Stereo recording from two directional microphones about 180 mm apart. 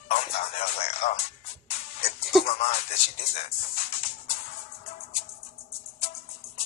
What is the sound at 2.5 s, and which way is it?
A man's voice, 35° left (ahead or behind).